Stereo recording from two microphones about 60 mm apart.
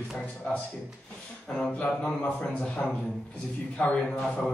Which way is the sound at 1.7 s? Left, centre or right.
Left.